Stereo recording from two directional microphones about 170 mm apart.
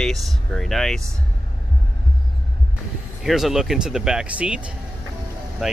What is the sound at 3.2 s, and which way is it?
Speech, centre (ahead or behind).